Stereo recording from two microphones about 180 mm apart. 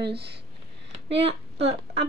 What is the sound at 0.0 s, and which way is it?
Speech, 65° right (ahead or behind).